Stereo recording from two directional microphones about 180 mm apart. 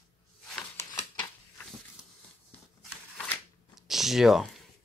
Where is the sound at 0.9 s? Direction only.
20° left (ahead or behind).